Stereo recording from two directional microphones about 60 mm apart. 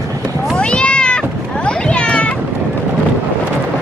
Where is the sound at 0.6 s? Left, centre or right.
Centre.